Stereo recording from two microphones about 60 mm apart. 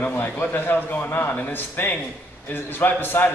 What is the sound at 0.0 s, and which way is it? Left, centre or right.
A man's voice, left.